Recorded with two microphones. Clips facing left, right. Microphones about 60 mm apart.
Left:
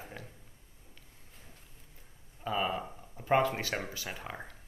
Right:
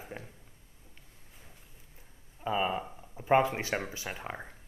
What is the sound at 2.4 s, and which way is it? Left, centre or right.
Speech, centre.